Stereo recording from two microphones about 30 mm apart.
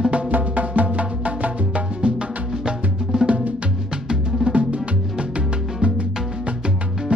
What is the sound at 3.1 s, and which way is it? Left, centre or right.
Music, right.